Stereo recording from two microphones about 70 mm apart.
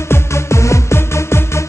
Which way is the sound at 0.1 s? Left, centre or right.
Left.